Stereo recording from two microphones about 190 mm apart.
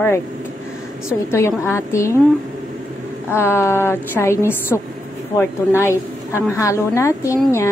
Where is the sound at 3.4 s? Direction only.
15° left (ahead or behind).